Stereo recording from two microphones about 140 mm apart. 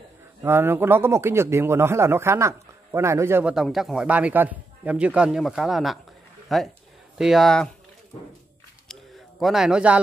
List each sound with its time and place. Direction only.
0.4 s a man's voice: 15° right (ahead or behind)
3.5 s a man's voice: centre (ahead or behind)
8.8 s a sound: centre (ahead or behind)